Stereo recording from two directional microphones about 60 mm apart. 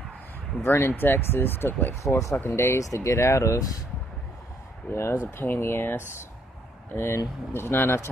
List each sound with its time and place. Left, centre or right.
0.6 s speech: left
2.0 s speech: left
2.4 s speech: left
2.8 s speech: left
4.9 s speech: left
5.2 s speech: left